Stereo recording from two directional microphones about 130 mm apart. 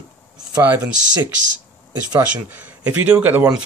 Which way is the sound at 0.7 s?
15° right (ahead or behind).